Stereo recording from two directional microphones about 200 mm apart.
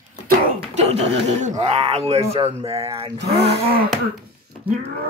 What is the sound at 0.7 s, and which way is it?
Speech, 35° right (ahead or behind).